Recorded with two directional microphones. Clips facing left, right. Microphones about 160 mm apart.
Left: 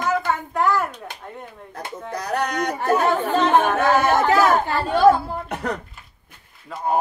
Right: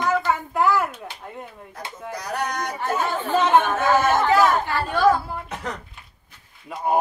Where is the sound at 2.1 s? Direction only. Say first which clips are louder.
Left 4 dB; 60° left (ahead or behind).